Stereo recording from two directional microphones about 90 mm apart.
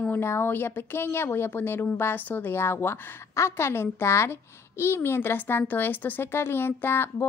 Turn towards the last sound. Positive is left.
turn(degrees=25)  # may be behind; listen again after turning